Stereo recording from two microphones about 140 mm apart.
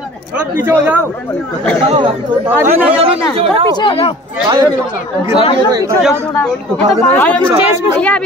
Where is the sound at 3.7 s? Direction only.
40° left (ahead or behind).